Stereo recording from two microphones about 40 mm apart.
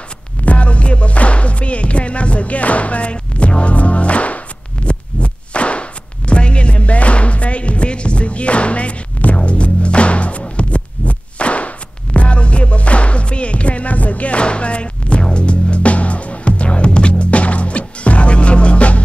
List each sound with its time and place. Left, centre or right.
0.5 s music: left